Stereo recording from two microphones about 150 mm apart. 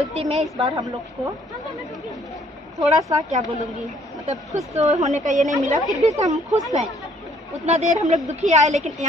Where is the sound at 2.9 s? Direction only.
50° right (ahead or behind).